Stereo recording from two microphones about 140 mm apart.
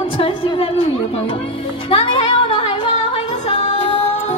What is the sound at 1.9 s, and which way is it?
Music, 40° left (ahead or behind).